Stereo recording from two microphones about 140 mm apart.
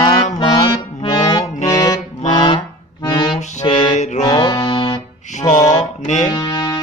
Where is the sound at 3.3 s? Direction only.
55° left (ahead or behind).